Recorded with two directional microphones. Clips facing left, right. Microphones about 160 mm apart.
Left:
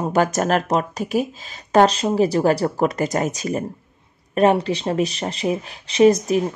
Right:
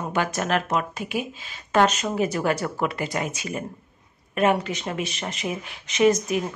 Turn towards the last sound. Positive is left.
turn(degrees=35)  # may be behind; listen again after turning